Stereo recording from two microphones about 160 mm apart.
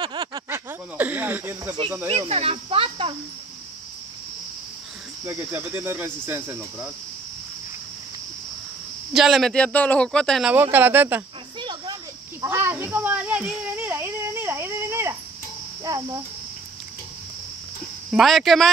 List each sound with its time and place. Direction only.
0.0 s a sound: 25° right (ahead or behind)
0.5 s a sound: 10° right (ahead or behind)
2.0 s speech: 40° right (ahead or behind)
5.2 s cricket: 15° right (ahead or behind)
9.1 s speech: centre (ahead or behind)
10.5 s cricket: 10° right (ahead or behind)
11.6 s cricket: 25° right (ahead or behind); by 13.5 s 10° right (ahead or behind)
13.5 s a sound: 10° right (ahead or behind)
15.8 s cricket: 20° right (ahead or behind)
18.1 s speech: centre (ahead or behind)